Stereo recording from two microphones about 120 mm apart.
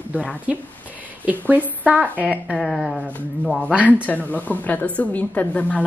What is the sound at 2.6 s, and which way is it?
A woman's voice, centre (ahead or behind).